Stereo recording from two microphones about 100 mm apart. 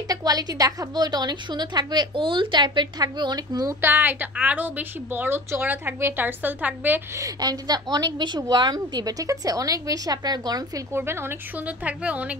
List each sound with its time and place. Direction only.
0.1 s a woman's voice: 40° right (ahead or behind)
3.8 s a woman's voice: 20° right (ahead or behind)
7.2 s a woman's voice: 40° right (ahead or behind)
10.9 s a woman's voice: 25° right (ahead or behind)